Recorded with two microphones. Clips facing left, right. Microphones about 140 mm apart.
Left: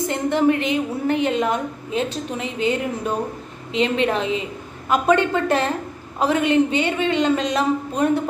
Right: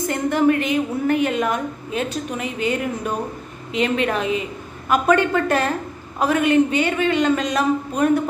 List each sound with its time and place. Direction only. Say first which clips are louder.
0.1 s a woman's voice: right 1 dB; 25° left (ahead or behind)